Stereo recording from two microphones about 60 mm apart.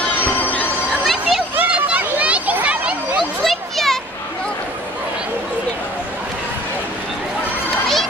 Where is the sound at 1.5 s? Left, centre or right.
Right.